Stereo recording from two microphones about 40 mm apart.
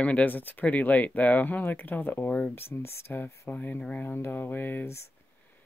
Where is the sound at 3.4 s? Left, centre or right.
Left.